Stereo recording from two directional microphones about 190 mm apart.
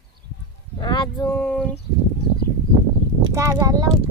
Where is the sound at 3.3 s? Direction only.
20° right (ahead or behind).